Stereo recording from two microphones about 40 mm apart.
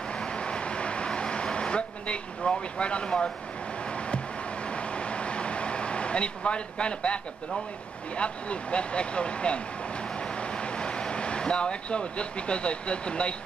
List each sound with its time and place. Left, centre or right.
0.2 s vehicle: left
4.6 s vehicle: left
8.2 s speech: left